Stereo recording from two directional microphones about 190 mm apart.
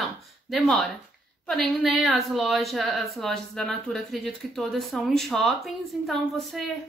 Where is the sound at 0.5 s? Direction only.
Centre (ahead or behind).